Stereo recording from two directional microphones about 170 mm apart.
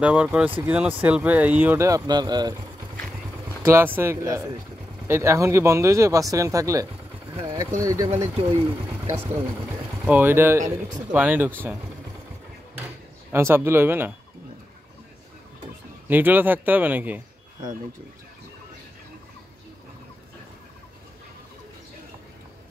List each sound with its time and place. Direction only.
0.0 s speech: 10° right (ahead or behind); by 2.5 s 25° right (ahead or behind)
3.6 s speech: 15° right (ahead or behind)
13.3 s speech: 15° right (ahead or behind)
16.1 s speech: 10° right (ahead or behind)